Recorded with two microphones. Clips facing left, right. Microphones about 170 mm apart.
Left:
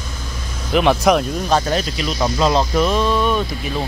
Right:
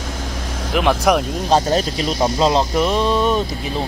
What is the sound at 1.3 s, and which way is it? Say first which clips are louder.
Speech: right 2 dB; 30° right (ahead or behind).